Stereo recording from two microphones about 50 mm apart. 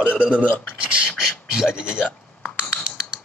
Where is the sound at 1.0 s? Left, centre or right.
Centre.